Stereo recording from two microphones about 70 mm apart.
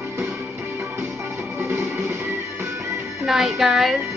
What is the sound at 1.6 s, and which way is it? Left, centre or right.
Music, right.